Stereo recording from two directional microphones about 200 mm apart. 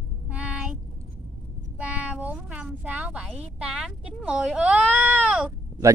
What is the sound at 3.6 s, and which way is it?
Sheep, 5° right (ahead or behind).